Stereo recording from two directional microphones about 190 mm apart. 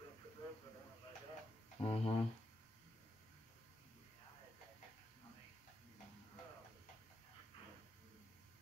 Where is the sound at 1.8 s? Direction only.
30° left (ahead or behind).